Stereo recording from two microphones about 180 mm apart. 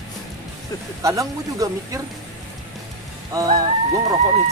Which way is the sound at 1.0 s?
20° right (ahead or behind).